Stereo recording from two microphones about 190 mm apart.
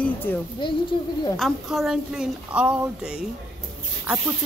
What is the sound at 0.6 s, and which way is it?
Speech, 25° left (ahead or behind).